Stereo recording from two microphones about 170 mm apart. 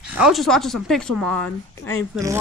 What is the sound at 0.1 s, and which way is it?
Speech, centre (ahead or behind).